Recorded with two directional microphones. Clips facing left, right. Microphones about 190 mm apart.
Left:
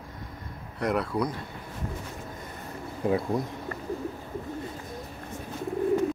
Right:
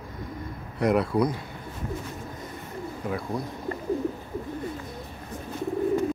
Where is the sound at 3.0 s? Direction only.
30° left (ahead or behind).